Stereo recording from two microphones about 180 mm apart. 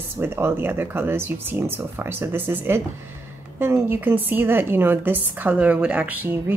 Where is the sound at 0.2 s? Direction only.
15° right (ahead or behind).